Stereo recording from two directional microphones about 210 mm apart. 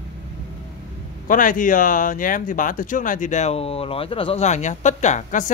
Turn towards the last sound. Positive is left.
turn(degrees=35)  # may be behind; listen again after turning